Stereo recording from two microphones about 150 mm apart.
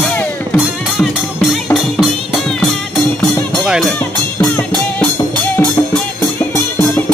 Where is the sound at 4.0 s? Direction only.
15° left (ahead or behind).